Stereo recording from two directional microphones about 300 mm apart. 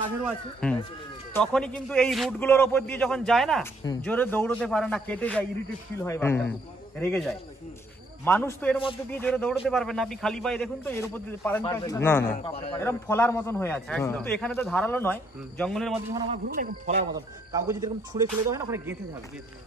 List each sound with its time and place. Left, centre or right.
0.2 s a man's voice: centre
12.4 s a man's voice: centre
12.7 s a man's voice: centre
16.1 s speech: centre
16.4 s speech: right
17.6 s speech: centre